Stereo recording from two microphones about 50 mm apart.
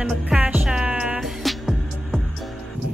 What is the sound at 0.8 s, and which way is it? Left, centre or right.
Music, centre.